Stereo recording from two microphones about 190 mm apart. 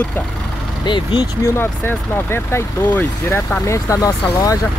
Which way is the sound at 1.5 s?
10° left (ahead or behind).